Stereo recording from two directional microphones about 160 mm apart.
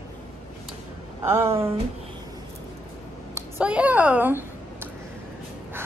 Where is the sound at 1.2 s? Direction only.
15° right (ahead or behind).